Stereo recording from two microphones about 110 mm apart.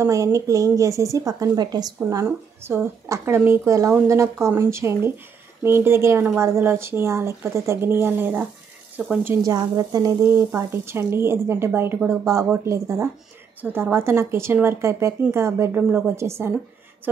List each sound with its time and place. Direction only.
0.0 s a woman's voice: 30° right (ahead or behind)
9.5 s a woman's voice: 35° right (ahead or behind)
10.2 s a woman's voice: 20° right (ahead or behind)